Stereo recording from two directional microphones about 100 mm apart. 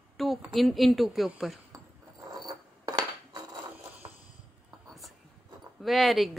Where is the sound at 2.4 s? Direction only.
40° right (ahead or behind).